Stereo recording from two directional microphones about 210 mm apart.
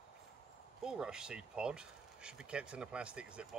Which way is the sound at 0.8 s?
5° right (ahead or behind).